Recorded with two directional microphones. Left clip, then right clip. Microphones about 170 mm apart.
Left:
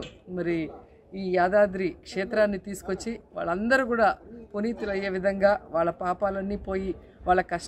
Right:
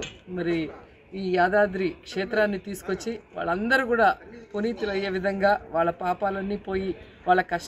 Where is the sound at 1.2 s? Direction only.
25° left (ahead or behind).